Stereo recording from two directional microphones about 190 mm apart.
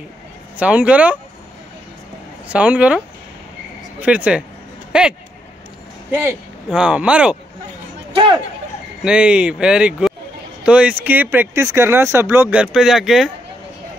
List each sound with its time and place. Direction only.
0.6 s speech: 5° right (ahead or behind)
2.4 s speech: 5° right (ahead or behind)
4.0 s speech: 5° right (ahead or behind)
6.1 s speech: 10° right (ahead or behind)
8.1 s speech: 25° right (ahead or behind)
9.0 s speech: 5° right (ahead or behind)